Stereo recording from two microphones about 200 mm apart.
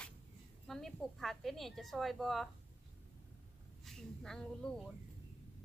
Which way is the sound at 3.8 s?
5° left (ahead or behind).